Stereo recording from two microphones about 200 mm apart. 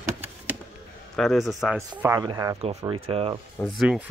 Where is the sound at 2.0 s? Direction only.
20° right (ahead or behind).